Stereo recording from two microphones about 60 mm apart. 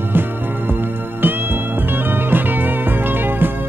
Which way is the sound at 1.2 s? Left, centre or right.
Right.